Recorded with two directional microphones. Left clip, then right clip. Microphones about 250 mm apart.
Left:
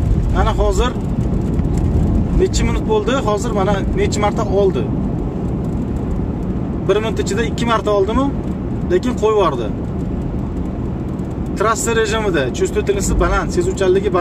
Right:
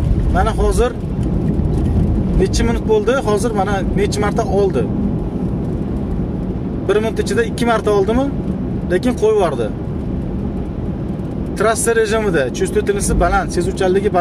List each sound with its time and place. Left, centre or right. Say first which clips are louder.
0.4 s speech: right 1 dB; centre
2.4 s speech: right 1 dB; centre
6.9 s speech: right 1 dB; centre
11.6 s speech: right 1 dB; centre